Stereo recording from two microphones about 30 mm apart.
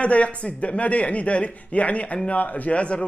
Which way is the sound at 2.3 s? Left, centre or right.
Left.